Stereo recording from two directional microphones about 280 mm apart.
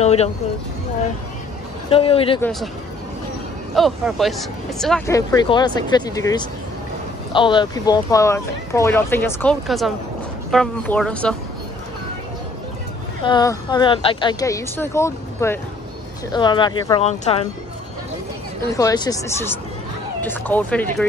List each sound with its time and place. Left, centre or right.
0.0 s a sound: left
1.9 s a man's voice: centre
3.7 s speech: centre
13.2 s speech: centre
18.7 s speech: centre